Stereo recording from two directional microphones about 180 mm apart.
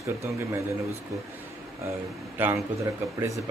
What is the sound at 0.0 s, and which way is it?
Speech, 15° right (ahead or behind).